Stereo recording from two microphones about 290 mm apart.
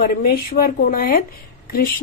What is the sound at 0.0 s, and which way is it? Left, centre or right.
A woman's voice, left.